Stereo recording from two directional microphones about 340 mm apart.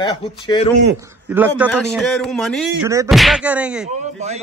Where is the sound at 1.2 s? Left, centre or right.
Centre.